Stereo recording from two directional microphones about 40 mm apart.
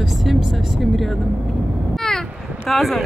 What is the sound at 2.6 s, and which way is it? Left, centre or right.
Speech, centre.